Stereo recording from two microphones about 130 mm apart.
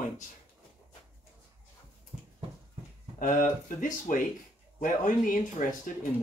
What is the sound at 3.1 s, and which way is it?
Speech, 90° left.